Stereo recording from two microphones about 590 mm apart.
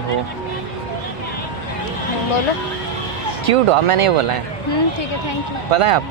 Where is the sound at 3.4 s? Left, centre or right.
Right.